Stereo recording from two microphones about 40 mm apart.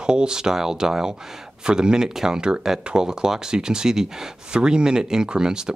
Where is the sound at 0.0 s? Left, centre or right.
Centre.